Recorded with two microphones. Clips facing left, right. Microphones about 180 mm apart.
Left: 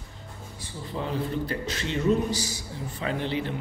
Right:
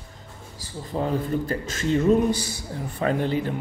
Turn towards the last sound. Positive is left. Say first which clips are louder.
# right 5 dB
turn(degrees=-45)  # may be behind; listen again after turning